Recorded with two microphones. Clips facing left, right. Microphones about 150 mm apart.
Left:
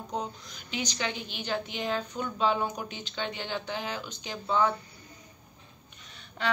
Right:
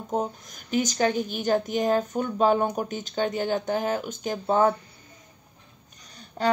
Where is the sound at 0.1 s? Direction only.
45° right (ahead or behind).